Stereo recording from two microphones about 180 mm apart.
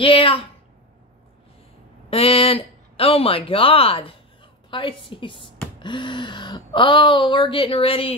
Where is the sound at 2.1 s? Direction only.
30° left (ahead or behind).